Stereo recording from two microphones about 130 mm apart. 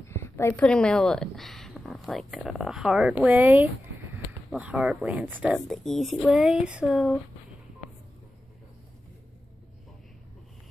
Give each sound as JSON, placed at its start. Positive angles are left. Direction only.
{"t": 0.1, "sound": "a sound", "side_deg": 20}
{"t": 0.7, "sound": "speech", "side_deg": 5}
{"t": 5.5, "sound": "speech", "side_deg": 0}